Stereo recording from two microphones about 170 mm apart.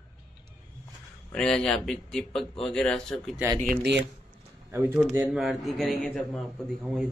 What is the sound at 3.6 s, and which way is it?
Speech, 65° right (ahead or behind).